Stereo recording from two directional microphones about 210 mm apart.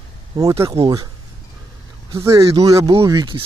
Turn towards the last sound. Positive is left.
turn(degrees=-20)  # may be behind; listen again after turning